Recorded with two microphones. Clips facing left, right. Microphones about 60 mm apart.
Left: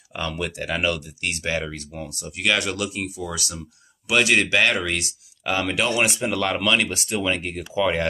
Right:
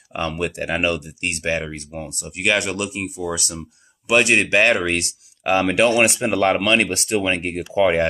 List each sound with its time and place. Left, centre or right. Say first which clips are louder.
0.1 s speech: right 4 dB; right
3.3 s speech: right 2 dB; right
4.7 s speech: right 4 dB; right